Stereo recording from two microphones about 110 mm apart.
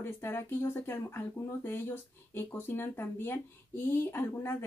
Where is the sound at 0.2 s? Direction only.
20° left (ahead or behind).